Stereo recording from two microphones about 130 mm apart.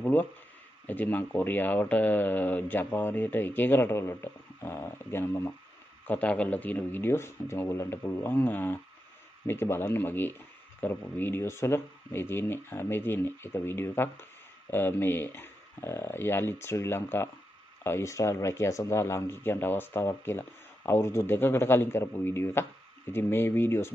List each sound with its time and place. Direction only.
0.0 s speech: 15° left (ahead or behind)